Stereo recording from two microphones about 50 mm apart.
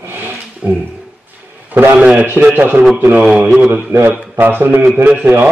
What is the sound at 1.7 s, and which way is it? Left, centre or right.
A man's voice, right.